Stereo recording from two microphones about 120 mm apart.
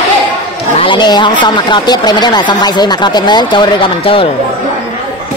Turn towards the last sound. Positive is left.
turn(degrees=45)  # may be behind; listen again after turning